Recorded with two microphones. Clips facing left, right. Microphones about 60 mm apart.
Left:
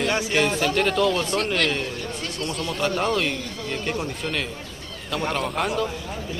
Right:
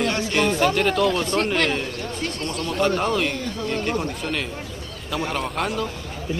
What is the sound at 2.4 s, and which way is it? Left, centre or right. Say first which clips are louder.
Speech: left 2 dB; right.